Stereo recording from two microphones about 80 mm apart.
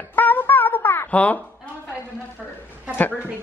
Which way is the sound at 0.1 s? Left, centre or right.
Left.